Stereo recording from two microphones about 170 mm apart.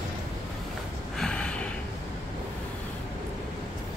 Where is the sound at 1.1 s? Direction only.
5° left (ahead or behind).